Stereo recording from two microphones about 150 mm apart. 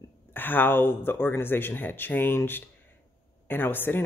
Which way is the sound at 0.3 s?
15° left (ahead or behind).